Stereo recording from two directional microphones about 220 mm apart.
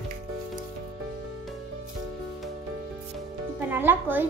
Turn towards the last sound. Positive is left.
turn(degrees=-10)  # may be behind; listen again after turning